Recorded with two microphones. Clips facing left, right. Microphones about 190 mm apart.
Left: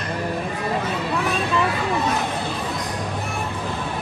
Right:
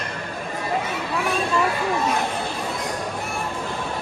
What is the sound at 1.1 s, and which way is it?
Speech, centre (ahead or behind).